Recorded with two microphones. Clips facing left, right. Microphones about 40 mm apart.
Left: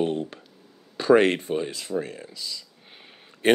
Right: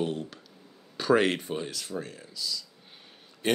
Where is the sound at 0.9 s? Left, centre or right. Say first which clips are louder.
Left 5 dB; centre.